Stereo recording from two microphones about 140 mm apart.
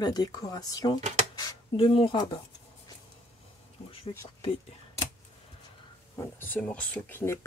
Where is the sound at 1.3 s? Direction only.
40° left (ahead or behind).